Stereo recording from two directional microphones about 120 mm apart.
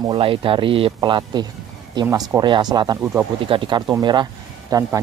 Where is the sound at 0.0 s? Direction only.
45° right (ahead or behind).